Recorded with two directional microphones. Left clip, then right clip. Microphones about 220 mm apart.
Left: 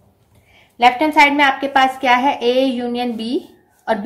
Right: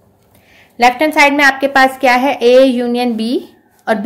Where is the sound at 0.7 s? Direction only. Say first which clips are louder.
Right 2 dB; 35° right (ahead or behind).